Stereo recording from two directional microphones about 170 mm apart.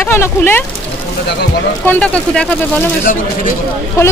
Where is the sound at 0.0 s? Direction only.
15° left (ahead or behind).